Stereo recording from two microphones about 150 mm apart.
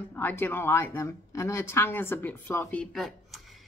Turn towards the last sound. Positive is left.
turn(degrees=0)  # may be behind; listen again after turning